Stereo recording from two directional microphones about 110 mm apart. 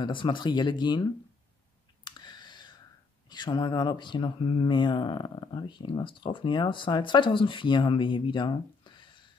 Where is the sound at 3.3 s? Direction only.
40° left (ahead or behind).